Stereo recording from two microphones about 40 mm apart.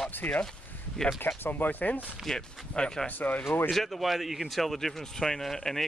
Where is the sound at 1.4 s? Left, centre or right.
Left.